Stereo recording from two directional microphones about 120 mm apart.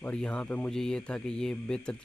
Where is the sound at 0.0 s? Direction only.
10° left (ahead or behind).